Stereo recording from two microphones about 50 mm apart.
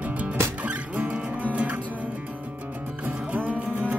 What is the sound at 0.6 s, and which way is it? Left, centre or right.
Music, right.